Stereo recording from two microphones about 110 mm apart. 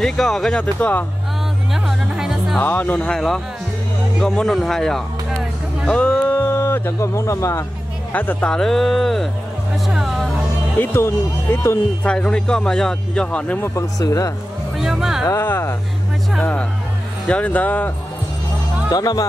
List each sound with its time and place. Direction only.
0.0 s speech: 5° left (ahead or behind)
1.7 s music: 5° right (ahead or behind)
2.6 s speech: 15° left (ahead or behind)
4.2 s speech: 5° left (ahead or behind)
5.9 s a sound: 10° left (ahead or behind); by 7.6 s 25° left (ahead or behind)
8.1 s speech: 15° left (ahead or behind)
8.5 s speech: 5° left (ahead or behind)
10.8 s speech: 25° left (ahead or behind)
12.1 s speech: 10° left (ahead or behind)
13.7 s speech: 35° left (ahead or behind)
14.8 s speech: 5° right (ahead or behind)
15.2 s speech: 20° left (ahead or behind)
17.3 s speech: 15° left (ahead or behind)
18.9 s speech: 35° left (ahead or behind)